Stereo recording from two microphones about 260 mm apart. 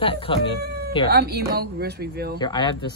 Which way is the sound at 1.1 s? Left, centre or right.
Right.